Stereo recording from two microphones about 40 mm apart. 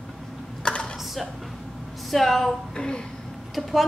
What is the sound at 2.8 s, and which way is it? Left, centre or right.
Speech, left.